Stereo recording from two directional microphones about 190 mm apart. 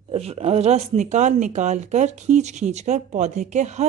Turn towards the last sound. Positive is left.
turn(degrees=-35)  # may be behind; listen again after turning